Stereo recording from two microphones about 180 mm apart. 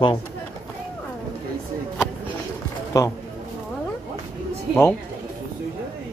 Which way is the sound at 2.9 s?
15° left (ahead or behind).